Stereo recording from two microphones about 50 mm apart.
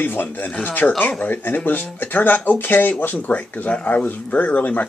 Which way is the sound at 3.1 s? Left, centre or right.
Left.